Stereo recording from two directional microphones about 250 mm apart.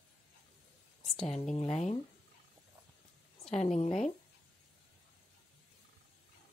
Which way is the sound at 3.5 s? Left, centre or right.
Left.